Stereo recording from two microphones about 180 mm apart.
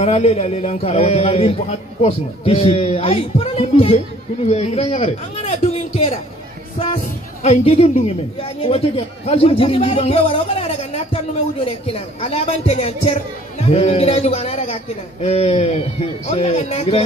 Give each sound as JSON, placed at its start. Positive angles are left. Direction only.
{"t": 0.0, "sound": "a man's voice", "side_deg": 35}
{"t": 7.4, "sound": "a man's voice", "side_deg": 35}